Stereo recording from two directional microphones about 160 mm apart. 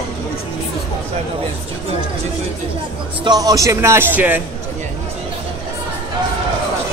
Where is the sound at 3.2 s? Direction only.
25° right (ahead or behind).